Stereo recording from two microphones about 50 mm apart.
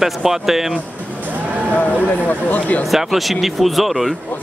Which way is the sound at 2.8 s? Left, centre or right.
Centre.